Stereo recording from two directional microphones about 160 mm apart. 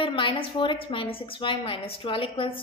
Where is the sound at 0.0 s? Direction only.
30° left (ahead or behind).